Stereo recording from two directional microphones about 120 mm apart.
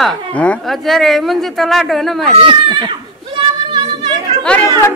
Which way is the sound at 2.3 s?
45° right (ahead or behind).